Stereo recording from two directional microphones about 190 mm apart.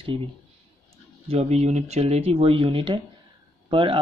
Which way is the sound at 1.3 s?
35° right (ahead or behind).